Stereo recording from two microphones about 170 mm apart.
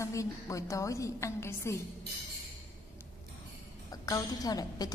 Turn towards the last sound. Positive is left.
turn(degrees=20)  # may be behind; listen again after turning